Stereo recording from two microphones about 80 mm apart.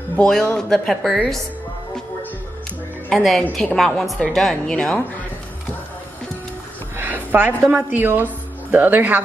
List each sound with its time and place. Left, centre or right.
0.2 s speech: centre
3.1 s speech: centre
7.0 s a sound: right
7.7 s a woman's voice: right